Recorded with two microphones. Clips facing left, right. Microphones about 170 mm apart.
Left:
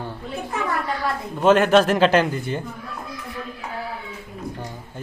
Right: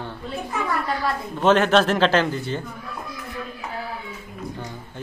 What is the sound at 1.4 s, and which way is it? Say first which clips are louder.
Speech: left 2 dB; 10° left (ahead or behind).